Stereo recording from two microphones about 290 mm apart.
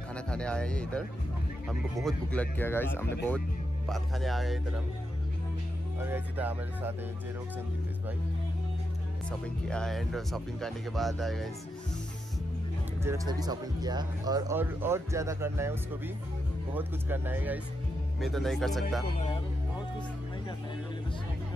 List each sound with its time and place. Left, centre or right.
0.1 s speech: centre
2.0 s speech: centre
5.9 s speech: centre
9.7 s speech: centre
13.0 s speech: centre
19.1 s speech: left